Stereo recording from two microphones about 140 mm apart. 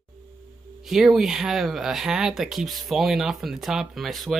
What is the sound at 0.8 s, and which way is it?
Speech, centre (ahead or behind).